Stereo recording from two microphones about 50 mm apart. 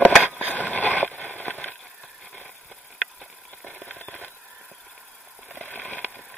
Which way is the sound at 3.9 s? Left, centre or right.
Left.